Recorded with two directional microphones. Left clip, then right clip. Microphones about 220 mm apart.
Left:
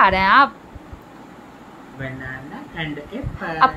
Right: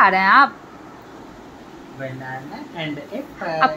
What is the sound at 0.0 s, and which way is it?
Speech, 15° left (ahead or behind).